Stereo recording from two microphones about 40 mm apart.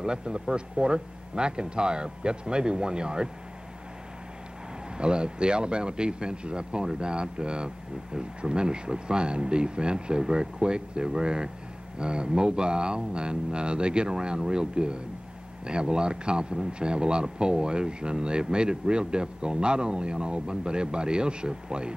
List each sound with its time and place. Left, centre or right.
0.0 s speech: right
4.9 s speech: right